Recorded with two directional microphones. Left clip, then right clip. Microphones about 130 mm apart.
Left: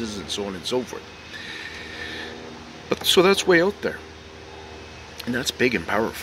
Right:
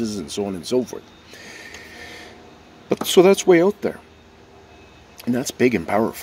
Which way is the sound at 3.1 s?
25° right (ahead or behind).